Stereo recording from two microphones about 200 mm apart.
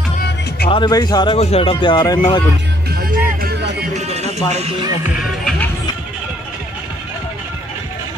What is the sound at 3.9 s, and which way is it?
Music, 30° right (ahead or behind).